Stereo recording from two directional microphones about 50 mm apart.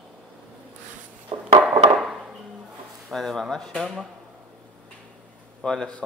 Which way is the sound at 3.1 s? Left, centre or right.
Centre.